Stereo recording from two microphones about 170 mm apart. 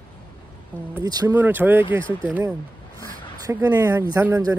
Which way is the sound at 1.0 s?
20° right (ahead or behind).